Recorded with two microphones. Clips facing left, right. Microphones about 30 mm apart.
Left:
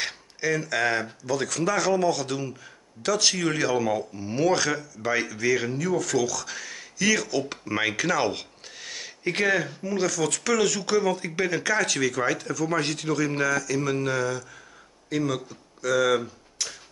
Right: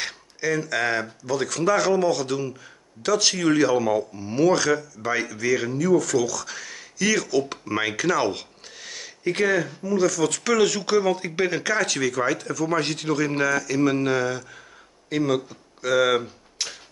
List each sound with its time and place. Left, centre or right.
0.0 s a sound: centre
1.2 s speech: centre
10.2 s speech: centre
11.6 s speech: centre; by 16.7 s right